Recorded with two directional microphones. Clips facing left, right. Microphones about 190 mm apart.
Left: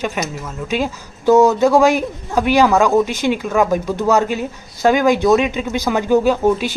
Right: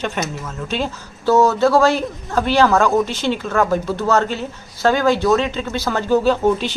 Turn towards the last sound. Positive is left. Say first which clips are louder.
# left 1 dB
turn(degrees=10)  # may be behind; listen again after turning